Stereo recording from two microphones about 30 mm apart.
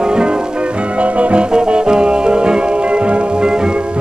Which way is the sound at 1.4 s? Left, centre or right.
Right.